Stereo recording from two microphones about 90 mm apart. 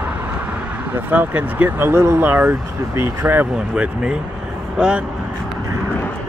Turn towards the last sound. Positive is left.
turn(degrees=-10)  # may be behind; listen again after turning